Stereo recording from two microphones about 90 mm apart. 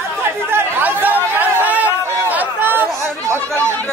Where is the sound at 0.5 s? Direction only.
20° right (ahead or behind).